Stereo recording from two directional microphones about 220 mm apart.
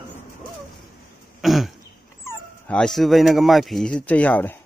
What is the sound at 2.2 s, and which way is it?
Speech, 5° left (ahead or behind).